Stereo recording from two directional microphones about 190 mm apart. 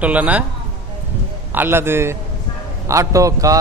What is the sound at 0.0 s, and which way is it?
Speech, 10° right (ahead or behind).